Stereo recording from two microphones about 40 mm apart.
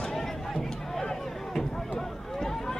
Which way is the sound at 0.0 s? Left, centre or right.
Centre.